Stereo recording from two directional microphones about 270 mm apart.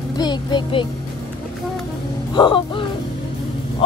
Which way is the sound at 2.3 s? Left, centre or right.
Centre.